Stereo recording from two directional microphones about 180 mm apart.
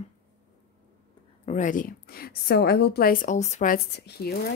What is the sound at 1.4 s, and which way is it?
A woman's voice, 45° left (ahead or behind).